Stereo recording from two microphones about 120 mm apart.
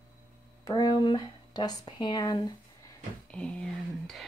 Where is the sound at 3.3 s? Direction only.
5° left (ahead or behind).